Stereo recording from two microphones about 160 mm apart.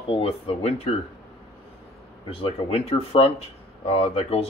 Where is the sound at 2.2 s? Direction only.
35° left (ahead or behind).